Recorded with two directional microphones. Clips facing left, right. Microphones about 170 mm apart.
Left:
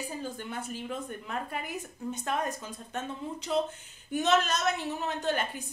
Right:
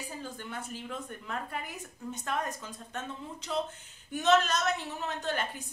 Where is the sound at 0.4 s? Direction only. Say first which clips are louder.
Left 3 dB; 15° left (ahead or behind).